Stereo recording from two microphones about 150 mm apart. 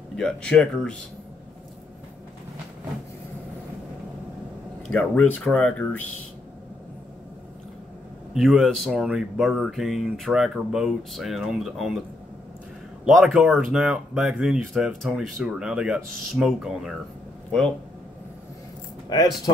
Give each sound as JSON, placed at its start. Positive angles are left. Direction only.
{"t": 0.1, "sound": "speech", "side_deg": 5}
{"t": 4.8, "sound": "speech", "side_deg": 10}
{"t": 8.4, "sound": "speech", "side_deg": 0}
{"t": 13.0, "sound": "speech", "side_deg": -5}
{"t": 19.0, "sound": "speech", "side_deg": 25}